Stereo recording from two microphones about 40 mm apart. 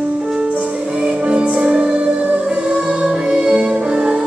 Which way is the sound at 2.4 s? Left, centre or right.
Centre.